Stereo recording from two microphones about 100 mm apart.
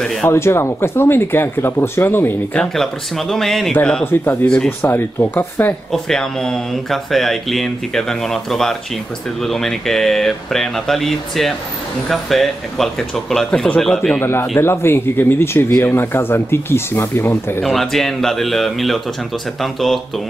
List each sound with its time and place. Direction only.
0.0 s speech: 5° left (ahead or behind)
0.3 s speech: 25° left (ahead or behind)
2.6 s speech: 5° left (ahead or behind)
4.0 s speech: 20° left (ahead or behind)
5.9 s speech: 5° left (ahead or behind)
14.6 s speech: 25° left (ahead or behind)
17.6 s speech: centre (ahead or behind)